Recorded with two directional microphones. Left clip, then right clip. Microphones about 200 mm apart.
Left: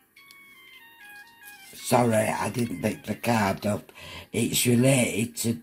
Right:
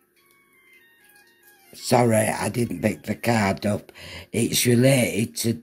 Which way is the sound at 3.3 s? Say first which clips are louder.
Right 2 dB; 60° right (ahead or behind).